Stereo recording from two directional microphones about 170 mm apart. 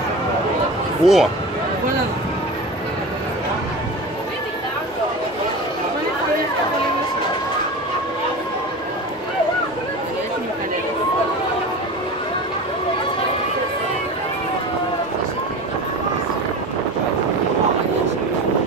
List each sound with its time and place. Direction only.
1.0 s speech: centre (ahead or behind)